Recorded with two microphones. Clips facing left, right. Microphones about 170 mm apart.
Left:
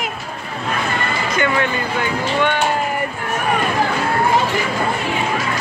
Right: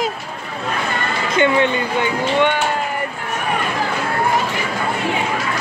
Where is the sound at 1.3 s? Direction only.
25° right (ahead or behind).